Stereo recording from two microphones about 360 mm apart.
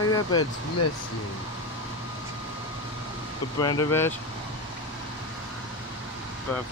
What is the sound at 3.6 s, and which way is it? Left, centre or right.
Speech, centre.